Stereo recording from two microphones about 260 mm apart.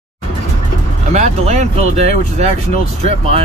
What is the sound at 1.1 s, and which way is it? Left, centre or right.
Speech, right.